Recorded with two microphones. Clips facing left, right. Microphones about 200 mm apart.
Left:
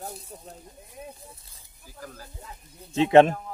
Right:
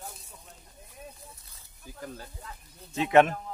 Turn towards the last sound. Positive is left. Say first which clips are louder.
# left 5 dB
turn(degrees=30)  # may be behind; listen again after turning